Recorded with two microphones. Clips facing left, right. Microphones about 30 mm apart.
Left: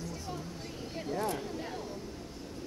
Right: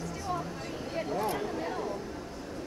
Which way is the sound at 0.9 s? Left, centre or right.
Centre.